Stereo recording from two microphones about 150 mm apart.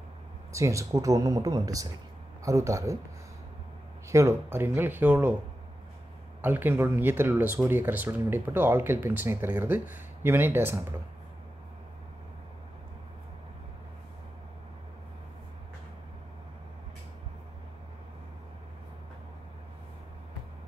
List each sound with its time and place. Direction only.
0.5 s speech: 20° right (ahead or behind)
4.1 s speech: 20° right (ahead or behind)
6.4 s speech: 15° right (ahead or behind)